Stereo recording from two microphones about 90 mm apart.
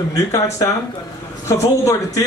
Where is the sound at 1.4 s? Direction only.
35° left (ahead or behind).